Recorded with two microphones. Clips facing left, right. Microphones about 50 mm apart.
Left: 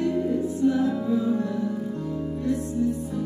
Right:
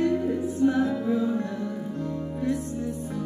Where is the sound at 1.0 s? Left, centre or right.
Centre.